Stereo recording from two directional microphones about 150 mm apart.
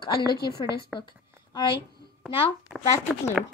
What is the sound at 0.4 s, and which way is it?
Speech, 90° left.